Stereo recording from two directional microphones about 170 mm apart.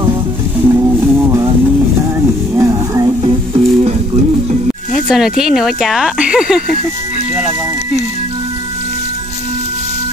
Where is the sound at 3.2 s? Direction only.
35° right (ahead or behind).